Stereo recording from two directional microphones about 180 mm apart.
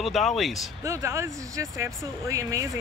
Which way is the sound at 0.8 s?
15° right (ahead or behind).